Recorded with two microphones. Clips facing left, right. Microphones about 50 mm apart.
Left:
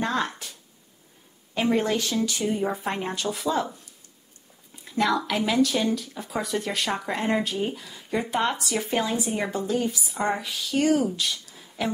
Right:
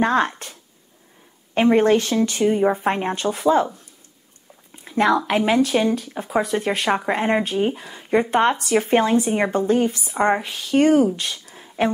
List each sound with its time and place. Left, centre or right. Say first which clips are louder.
0.0 s speech: right 8 dB; right
1.5 s speech: right 8 dB; right
4.8 s speech: right 6 dB; right